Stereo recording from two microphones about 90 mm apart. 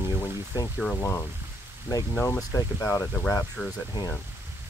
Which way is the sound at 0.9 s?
35° left (ahead or behind).